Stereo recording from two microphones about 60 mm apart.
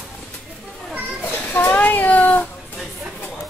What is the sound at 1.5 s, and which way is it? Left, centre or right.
Speech, left.